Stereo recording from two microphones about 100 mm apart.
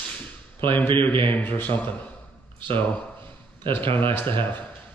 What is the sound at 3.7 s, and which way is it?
Speech, 20° left (ahead or behind).